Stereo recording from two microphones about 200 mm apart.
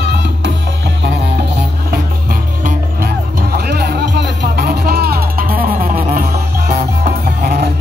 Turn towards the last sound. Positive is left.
turn(degrees=-50)  # may be behind; listen again after turning